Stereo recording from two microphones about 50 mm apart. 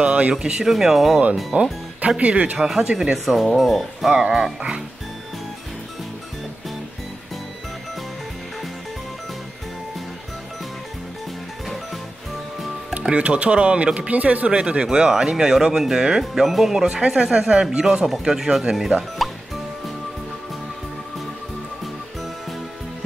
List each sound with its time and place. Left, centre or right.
0.0 s speech: right; by 1.2 s centre
1.5 s speech: right
2.5 s speech: centre
4.1 s speech: centre
13.1 s speech: right
14.5 s speech: centre